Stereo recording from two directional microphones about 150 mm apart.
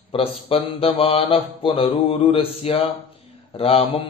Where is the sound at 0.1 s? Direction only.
40° left (ahead or behind).